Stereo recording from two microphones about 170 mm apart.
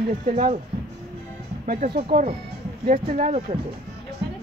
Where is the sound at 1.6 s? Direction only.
60° right (ahead or behind).